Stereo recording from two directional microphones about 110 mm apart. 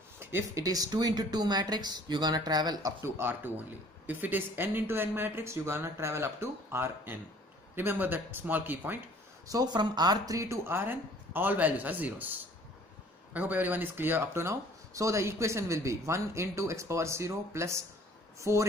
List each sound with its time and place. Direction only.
0.2 s speech: 25° right (ahead or behind)
3.0 s speech: 20° right (ahead or behind)
9.5 s speech: 40° right (ahead or behind)